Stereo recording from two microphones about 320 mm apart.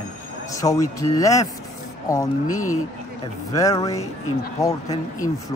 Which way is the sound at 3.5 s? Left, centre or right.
Centre.